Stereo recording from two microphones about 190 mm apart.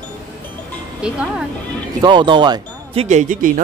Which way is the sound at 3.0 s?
40° right (ahead or behind).